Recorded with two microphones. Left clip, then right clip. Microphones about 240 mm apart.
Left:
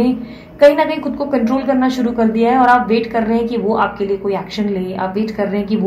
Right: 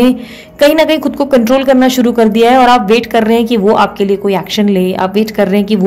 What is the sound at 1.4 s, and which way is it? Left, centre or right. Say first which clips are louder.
A woman's voice: right 7 dB; right.